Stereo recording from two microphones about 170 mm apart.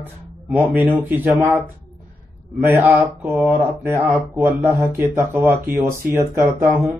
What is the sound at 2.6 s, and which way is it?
Speech, 10° right (ahead or behind).